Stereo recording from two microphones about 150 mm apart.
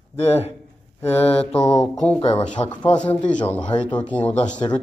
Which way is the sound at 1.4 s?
5° left (ahead or behind).